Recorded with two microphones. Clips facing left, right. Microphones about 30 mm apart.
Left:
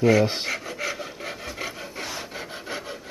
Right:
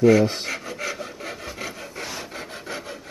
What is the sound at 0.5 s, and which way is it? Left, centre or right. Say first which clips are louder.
Rub: even; centre.